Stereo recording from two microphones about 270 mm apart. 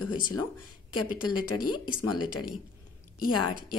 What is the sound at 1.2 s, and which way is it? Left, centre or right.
Speech, left.